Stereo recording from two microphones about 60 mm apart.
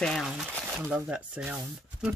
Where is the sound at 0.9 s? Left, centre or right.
Right.